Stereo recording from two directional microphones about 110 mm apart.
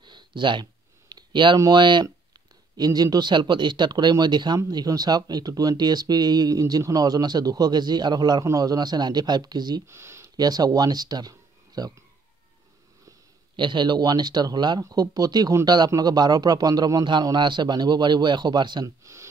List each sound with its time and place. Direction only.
0.0 s a sound: 45° right (ahead or behind)
1.6 s speech: 40° right (ahead or behind)
9.8 s speech: 25° right (ahead or behind)
10.3 s speech: 35° right (ahead or behind)
13.6 s speech: 45° right (ahead or behind)